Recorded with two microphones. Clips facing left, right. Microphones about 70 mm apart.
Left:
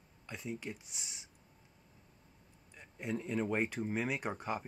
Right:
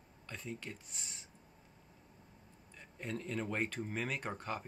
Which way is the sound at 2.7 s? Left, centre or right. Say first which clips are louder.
Left 3 dB; centre.